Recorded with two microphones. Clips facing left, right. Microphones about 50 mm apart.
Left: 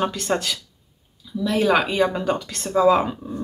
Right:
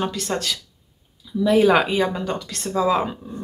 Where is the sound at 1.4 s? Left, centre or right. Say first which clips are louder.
Right 3 dB; centre.